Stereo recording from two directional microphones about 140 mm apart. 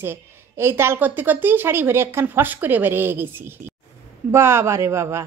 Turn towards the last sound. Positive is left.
turn(degrees=-20)  # may be behind; listen again after turning